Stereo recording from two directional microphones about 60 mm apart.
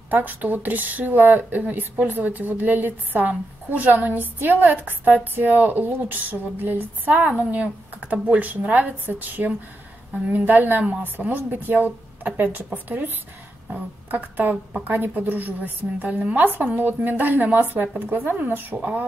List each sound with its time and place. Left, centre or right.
0.1 s speech: right